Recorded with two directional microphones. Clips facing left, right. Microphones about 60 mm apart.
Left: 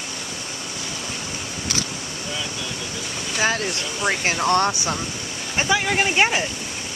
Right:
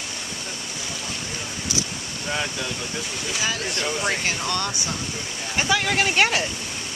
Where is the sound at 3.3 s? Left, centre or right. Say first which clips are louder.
Left 5 dB; left.